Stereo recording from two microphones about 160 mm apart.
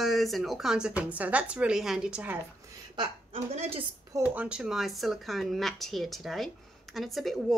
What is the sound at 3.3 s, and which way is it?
Speech, 40° right (ahead or behind).